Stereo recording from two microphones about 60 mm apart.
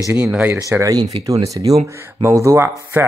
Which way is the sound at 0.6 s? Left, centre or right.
Right.